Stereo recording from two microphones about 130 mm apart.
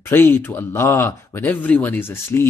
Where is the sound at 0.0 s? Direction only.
15° left (ahead or behind).